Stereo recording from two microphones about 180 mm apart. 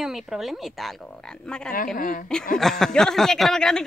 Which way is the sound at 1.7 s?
50° left (ahead or behind).